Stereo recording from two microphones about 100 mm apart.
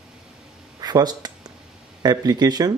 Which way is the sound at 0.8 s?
45° right (ahead or behind).